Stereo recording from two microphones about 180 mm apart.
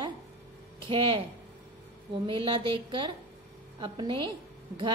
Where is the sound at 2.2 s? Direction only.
30° right (ahead or behind).